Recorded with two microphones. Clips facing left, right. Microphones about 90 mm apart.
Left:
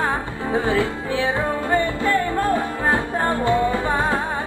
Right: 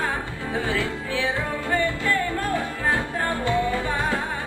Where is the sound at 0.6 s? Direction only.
25° left (ahead or behind).